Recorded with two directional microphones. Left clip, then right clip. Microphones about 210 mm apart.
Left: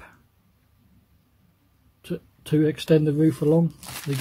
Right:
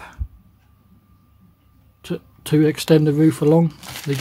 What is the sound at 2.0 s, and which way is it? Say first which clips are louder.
Speech: right 5 dB; 10° right (ahead or behind).